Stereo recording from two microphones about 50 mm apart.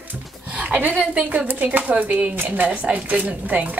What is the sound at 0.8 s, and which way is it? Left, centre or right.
A woman's voice, right.